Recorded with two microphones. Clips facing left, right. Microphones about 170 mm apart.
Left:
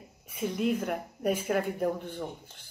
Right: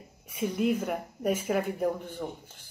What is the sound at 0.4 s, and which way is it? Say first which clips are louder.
Speech: right 1 dB; centre (ahead or behind).